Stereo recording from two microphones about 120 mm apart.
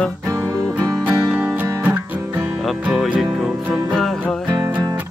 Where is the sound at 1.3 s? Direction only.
15° right (ahead or behind).